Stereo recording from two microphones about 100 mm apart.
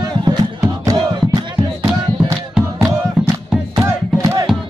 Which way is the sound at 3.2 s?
5° right (ahead or behind).